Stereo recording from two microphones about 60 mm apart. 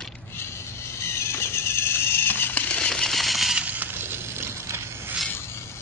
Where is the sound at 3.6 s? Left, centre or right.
Right.